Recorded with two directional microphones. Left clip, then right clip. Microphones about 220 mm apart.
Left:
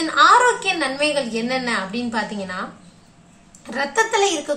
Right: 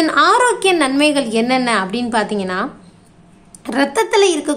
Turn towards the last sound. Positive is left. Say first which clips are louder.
# right 5 dB
turn(degrees=-50)  # may be behind; listen again after turning